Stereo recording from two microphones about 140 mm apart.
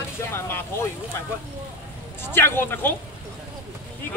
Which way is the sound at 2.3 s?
15° left (ahead or behind).